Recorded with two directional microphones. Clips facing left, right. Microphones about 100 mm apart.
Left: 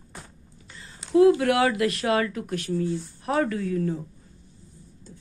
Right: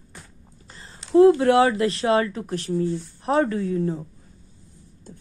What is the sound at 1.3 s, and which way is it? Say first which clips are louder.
Speech: right 4 dB; 30° right (ahead or behind).